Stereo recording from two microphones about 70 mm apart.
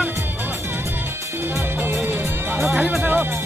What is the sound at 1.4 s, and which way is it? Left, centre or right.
Music, right.